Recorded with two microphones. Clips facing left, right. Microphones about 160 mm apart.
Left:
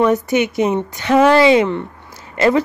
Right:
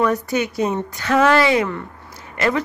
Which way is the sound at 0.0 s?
20° left (ahead or behind).